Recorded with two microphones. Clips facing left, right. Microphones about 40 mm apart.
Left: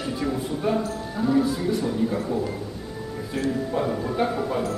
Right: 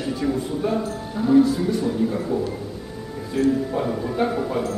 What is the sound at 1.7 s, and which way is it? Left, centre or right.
Speech, centre.